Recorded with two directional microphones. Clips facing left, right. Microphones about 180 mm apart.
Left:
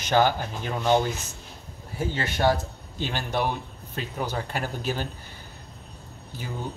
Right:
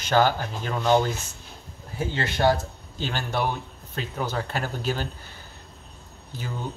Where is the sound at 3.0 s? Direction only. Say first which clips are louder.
Even; 15° left (ahead or behind).